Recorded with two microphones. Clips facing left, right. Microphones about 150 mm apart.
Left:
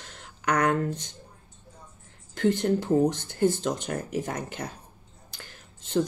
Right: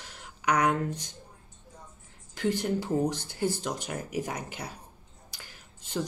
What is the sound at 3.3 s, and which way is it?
Speech, 50° left (ahead or behind).